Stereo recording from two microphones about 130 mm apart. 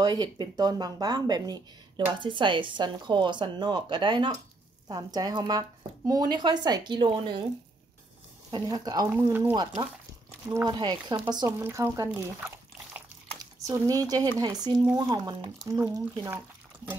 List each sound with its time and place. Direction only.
0.0 s speech: 35° right (ahead or behind)
8.5 s speech: 30° right (ahead or behind)
9.1 s speech: 20° right (ahead or behind)
10.5 s speech: 30° right (ahead or behind)
11.6 s speech: 20° right (ahead or behind)
13.7 s speech: 25° right (ahead or behind)